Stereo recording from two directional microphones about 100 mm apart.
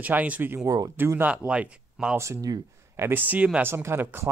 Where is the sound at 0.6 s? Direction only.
40° right (ahead or behind).